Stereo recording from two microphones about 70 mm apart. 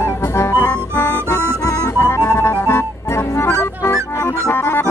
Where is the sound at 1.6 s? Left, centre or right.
Left.